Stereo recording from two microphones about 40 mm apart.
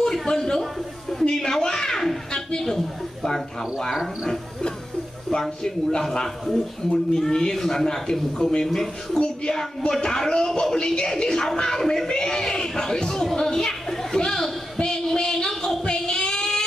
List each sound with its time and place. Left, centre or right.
0.0 s a sound: centre
4.3 s speech: centre
8.6 s speech: centre
15.8 s child singing: centre